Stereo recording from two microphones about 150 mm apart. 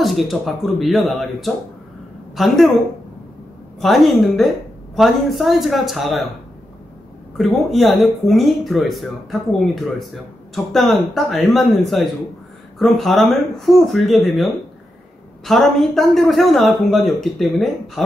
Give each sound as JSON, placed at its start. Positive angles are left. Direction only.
{"t": 0.0, "sound": "speech", "side_deg": 0}
{"t": 3.8, "sound": "speech", "side_deg": 0}
{"t": 7.3, "sound": "speech", "side_deg": 0}